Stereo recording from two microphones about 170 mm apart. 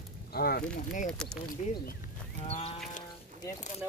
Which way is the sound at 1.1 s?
5° left (ahead or behind).